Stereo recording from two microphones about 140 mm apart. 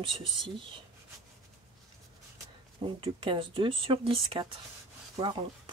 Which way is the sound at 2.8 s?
35° right (ahead or behind).